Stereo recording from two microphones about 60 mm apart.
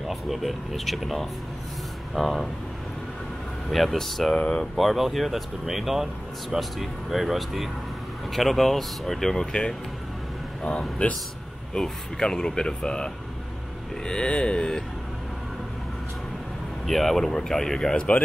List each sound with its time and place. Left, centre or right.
0.1 s speech: centre
3.7 s speech: centre
4.4 s speech: centre
4.7 s speech: centre
16.8 s speech: centre
17.9 s speech: left